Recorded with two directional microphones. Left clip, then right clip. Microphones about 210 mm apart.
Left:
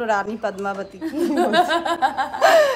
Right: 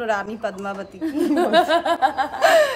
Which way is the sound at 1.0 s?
15° right (ahead or behind).